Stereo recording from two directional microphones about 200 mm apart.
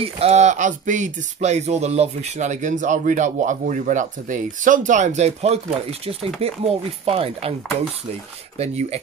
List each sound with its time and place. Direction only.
0.0 s speech: 30° right (ahead or behind)
8.5 s speech: 30° right (ahead or behind)